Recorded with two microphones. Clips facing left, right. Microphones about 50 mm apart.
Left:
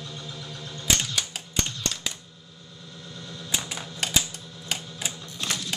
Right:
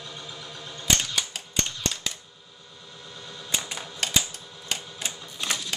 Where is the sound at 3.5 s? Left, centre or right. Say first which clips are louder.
Even; centre.